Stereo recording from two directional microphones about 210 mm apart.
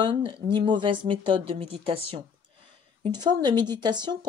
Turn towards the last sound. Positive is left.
turn(degrees=-20)  # may be behind; listen again after turning